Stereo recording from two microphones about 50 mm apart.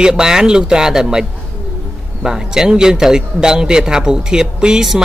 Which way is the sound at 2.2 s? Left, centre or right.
Centre.